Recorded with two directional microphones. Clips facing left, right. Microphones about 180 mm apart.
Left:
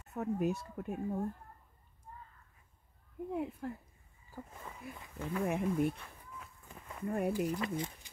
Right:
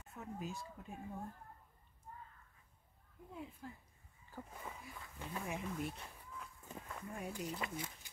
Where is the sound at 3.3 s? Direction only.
65° left (ahead or behind).